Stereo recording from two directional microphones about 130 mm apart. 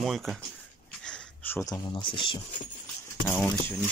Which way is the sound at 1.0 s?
5° left (ahead or behind).